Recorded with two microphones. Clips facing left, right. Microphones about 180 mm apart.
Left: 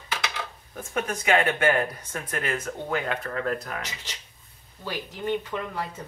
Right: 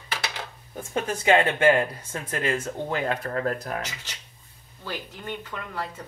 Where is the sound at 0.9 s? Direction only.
30° right (ahead or behind).